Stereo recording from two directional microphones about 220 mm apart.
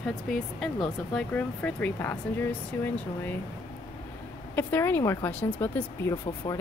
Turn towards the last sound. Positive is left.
turn(degrees=10)  # may be behind; listen again after turning